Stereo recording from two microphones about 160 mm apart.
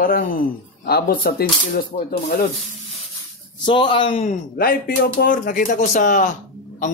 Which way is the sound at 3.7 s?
30° left (ahead or behind).